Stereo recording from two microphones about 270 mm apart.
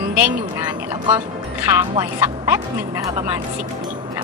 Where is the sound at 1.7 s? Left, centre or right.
Centre.